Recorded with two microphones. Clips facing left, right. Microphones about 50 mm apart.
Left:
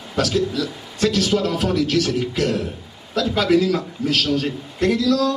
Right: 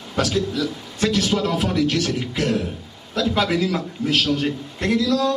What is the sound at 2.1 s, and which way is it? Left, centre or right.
A man's voice, centre.